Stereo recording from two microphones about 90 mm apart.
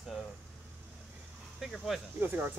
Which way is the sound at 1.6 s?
5° right (ahead or behind).